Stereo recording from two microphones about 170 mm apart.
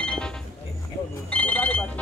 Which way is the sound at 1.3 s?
10° left (ahead or behind).